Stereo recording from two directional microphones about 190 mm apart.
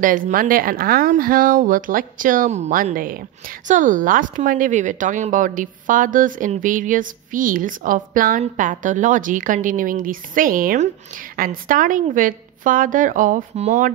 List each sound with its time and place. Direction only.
0.3 s speech: 50° right (ahead or behind)